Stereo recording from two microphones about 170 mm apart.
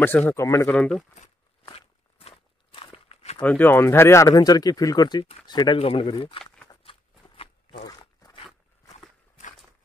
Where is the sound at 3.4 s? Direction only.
10° left (ahead or behind); by 6.4 s 30° left (ahead or behind).